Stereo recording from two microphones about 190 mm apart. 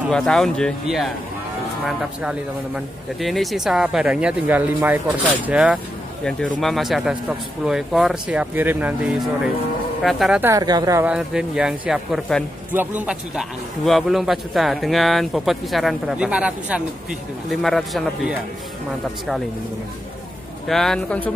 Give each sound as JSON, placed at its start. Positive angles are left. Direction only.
{"t": 0.1, "sound": "a man's voice", "side_deg": 5}
{"t": 6.2, "sound": "a man's voice", "side_deg": 5}
{"t": 10.4, "sound": "a woman's voice", "side_deg": -20}
{"t": 11.1, "sound": "a man's voice", "side_deg": -5}
{"t": 20.6, "sound": "a man's voice", "side_deg": 0}